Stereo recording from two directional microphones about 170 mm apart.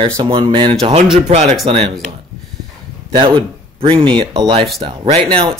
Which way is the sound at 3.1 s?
30° right (ahead or behind).